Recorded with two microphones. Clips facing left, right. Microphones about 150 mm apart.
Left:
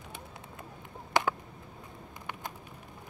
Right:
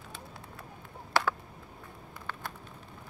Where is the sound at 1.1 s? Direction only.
15° left (ahead or behind).